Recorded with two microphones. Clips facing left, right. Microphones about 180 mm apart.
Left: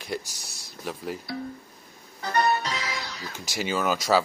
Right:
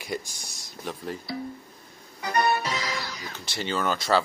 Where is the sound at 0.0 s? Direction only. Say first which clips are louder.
Even; centre (ahead or behind).